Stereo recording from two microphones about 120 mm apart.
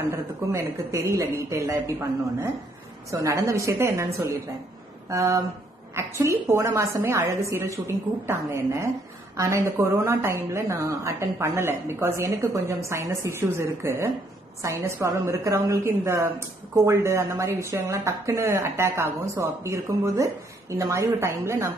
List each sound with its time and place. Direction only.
0.1 s a woman's voice: 25° right (ahead or behind)
3.1 s a woman's voice: 25° right (ahead or behind)